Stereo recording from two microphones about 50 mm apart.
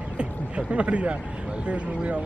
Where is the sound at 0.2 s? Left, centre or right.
Right.